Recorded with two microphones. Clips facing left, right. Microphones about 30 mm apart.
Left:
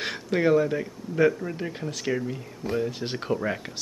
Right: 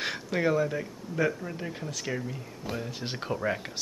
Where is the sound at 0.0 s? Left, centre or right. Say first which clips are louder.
Left 4 dB; centre.